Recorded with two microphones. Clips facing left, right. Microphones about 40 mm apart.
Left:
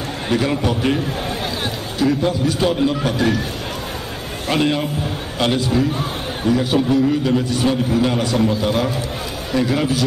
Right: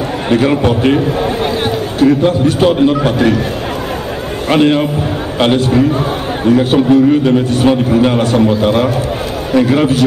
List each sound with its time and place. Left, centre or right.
0.3 s a man's voice: right
4.5 s a man's voice: right